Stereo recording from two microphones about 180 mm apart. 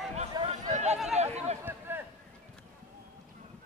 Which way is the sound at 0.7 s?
40° right (ahead or behind).